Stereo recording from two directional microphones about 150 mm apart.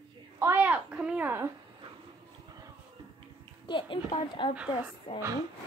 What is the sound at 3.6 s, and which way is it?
Speech, 35° left (ahead or behind).